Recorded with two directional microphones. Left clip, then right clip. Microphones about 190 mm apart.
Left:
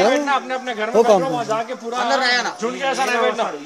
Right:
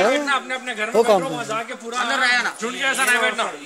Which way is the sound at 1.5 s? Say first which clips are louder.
Left 4 dB; 25° left (ahead or behind).